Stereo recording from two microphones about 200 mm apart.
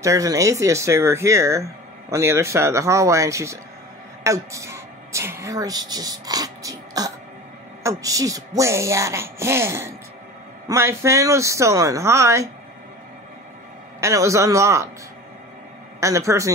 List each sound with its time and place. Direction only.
0.0 s speech: 15° right (ahead or behind)
14.0 s speech: 15° right (ahead or behind)
16.0 s speech: 15° right (ahead or behind)